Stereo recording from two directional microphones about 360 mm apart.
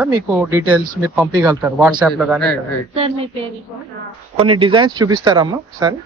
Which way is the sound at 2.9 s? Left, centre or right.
Centre.